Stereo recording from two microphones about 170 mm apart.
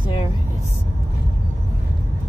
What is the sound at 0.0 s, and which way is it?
Vehicle, 30° left (ahead or behind).